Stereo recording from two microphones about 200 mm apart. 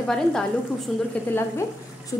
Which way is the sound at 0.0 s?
5° left (ahead or behind).